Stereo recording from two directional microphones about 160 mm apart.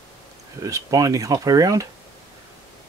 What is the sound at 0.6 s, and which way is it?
Speech, 20° right (ahead or behind).